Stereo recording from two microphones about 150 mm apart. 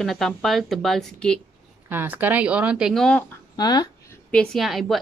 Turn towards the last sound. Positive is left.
turn(degrees=0)  # may be behind; listen again after turning